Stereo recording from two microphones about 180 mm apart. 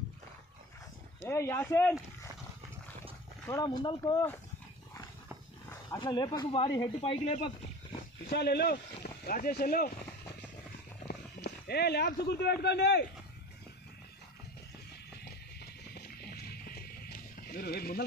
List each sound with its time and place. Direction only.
1.2 s speech: 15° left (ahead or behind)
3.4 s speech: 20° left (ahead or behind)
5.7 s speech: 20° left (ahead or behind)
8.3 s speech: 65° left (ahead or behind)
11.1 s speech: 60° left (ahead or behind)
15.6 s music: 60° left (ahead or behind)